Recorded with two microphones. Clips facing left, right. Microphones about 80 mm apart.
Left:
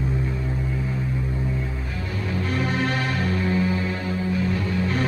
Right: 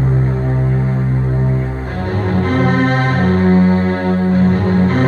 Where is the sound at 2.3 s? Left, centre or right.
Right.